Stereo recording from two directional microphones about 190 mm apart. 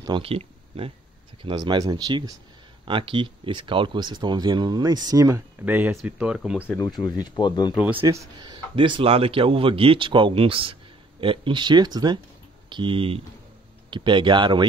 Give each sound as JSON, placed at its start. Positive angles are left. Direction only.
{"t": 0.0, "sound": "speech", "side_deg": -25}
{"t": 7.2, "sound": "speech", "side_deg": 25}
{"t": 8.1, "sound": "speech", "side_deg": -20}